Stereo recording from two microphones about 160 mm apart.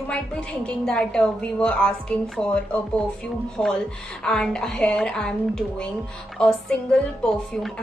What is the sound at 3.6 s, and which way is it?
Music, 5° left (ahead or behind).